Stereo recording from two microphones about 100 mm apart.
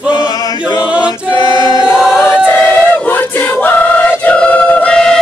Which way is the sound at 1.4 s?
45° left (ahead or behind).